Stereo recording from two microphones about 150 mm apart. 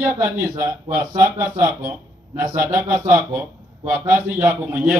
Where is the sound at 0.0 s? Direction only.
15° right (ahead or behind).